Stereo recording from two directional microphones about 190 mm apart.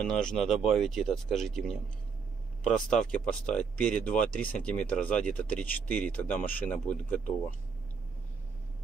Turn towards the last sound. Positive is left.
turn(degrees=10)  # may be behind; listen again after turning